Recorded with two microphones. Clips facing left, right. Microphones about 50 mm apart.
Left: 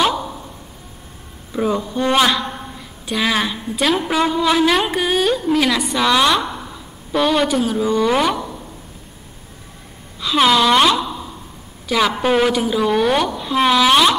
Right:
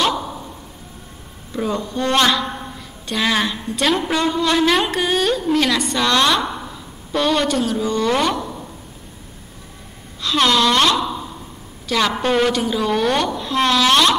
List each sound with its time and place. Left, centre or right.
0.0 s a sound: centre
1.5 s a woman's voice: centre
10.2 s a woman's voice: centre
12.2 s a woman's voice: centre